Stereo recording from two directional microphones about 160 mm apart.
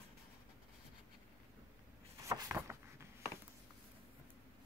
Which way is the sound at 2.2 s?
15° right (ahead or behind).